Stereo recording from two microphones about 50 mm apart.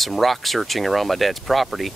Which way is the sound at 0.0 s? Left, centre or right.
Centre.